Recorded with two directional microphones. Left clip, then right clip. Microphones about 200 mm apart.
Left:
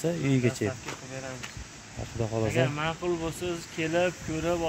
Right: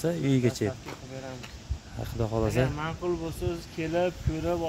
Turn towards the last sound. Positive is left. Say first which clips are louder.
# left 1 dB
turn(degrees=0)  # may be behind; listen again after turning